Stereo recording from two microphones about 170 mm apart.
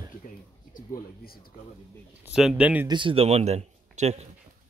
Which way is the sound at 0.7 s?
60° left (ahead or behind).